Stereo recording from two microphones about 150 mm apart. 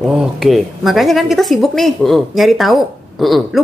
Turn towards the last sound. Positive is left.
turn(degrees=0)  # may be behind; listen again after turning